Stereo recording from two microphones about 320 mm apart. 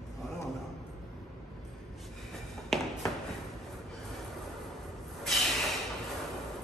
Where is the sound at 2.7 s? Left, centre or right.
Centre.